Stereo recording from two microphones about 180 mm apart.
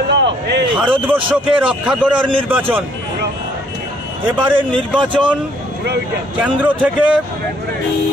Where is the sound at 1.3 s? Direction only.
5° right (ahead or behind).